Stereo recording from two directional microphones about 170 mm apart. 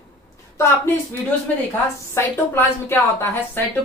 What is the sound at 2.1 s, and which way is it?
A woman's voice, 15° left (ahead or behind).